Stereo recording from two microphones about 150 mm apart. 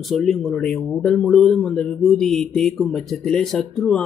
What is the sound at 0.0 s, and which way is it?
Speech, centre (ahead or behind).